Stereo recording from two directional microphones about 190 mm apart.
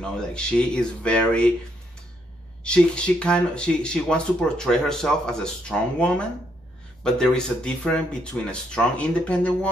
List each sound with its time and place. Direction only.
0.0 s speech: 5° left (ahead or behind)
2.6 s speech: 5° left (ahead or behind)